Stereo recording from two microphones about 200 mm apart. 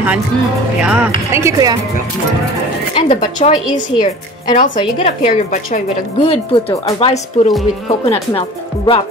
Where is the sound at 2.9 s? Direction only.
30° left (ahead or behind).